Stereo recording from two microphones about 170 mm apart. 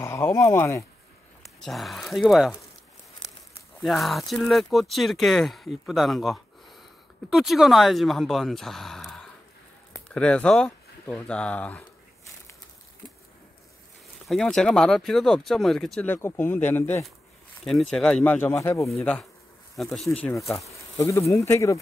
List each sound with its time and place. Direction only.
0.0 s speech: 15° left (ahead or behind)
1.6 s speech: centre (ahead or behind)
3.8 s speech: centre (ahead or behind)
14.2 s speech: centre (ahead or behind)
16.2 s speech: 15° left (ahead or behind)
18.9 s speech: 5° left (ahead or behind)
21.0 s speech: 20° left (ahead or behind)